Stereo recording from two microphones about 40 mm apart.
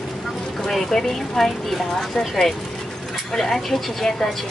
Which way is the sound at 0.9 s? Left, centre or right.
Centre.